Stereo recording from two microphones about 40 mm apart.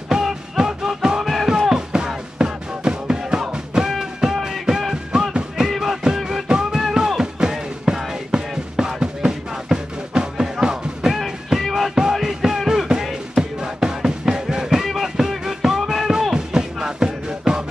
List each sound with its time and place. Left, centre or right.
0.1 s music: centre
1.7 s music: centre
11.1 s music: centre
16.1 s music: centre